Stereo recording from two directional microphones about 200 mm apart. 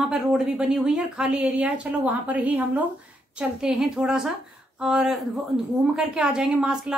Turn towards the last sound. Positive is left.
turn(degrees=-5)  # may be behind; listen again after turning